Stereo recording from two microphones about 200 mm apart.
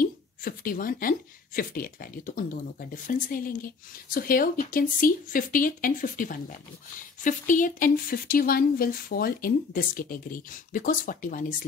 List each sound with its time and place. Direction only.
0.0 s speech: 45° left (ahead or behind)